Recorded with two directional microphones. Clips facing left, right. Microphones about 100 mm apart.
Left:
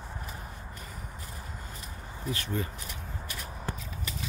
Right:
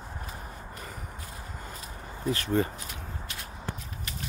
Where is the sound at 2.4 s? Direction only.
45° right (ahead or behind).